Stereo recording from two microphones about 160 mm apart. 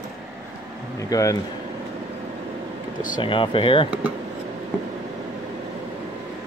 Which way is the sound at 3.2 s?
30° left (ahead or behind).